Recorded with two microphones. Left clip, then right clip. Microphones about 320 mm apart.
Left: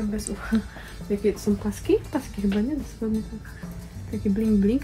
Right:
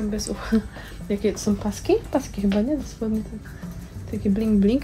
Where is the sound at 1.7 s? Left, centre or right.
Right.